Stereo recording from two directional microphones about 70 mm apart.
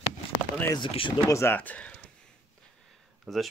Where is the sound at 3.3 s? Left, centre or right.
Centre.